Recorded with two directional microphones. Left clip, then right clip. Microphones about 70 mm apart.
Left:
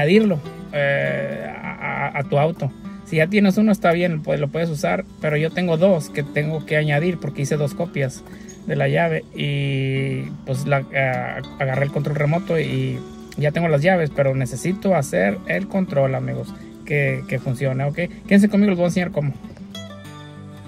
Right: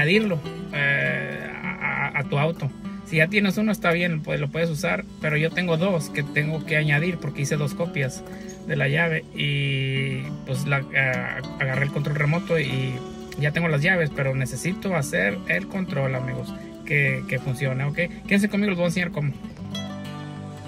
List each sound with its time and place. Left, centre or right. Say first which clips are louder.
0.0 s speech: left 4 dB; left
9.5 s speech: left 3 dB; left